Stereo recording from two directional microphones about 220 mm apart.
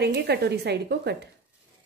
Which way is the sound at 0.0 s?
50° right (ahead or behind).